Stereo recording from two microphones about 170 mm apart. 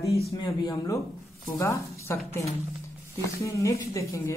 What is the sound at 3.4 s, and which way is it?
Speech, 20° left (ahead or behind).